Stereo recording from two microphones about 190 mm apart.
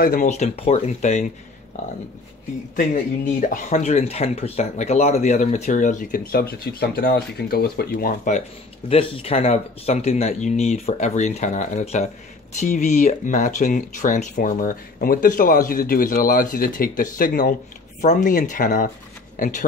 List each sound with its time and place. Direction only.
0.0 s speech: 45° left (ahead or behind)
2.7 s speech: 45° left (ahead or behind)
8.3 s speech: 35° left (ahead or behind)